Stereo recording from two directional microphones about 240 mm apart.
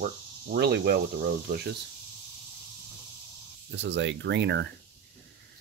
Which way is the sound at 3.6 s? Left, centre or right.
Right.